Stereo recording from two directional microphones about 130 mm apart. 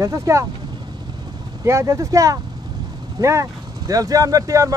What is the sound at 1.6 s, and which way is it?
Speech, 20° right (ahead or behind).